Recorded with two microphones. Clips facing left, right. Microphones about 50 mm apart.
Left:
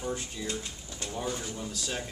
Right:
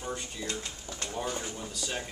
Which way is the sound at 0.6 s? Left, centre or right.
Right.